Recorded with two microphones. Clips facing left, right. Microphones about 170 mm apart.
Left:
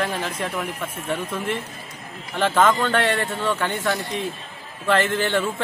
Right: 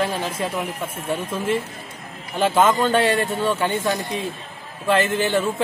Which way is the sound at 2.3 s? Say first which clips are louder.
Right 1 dB; 10° right (ahead or behind).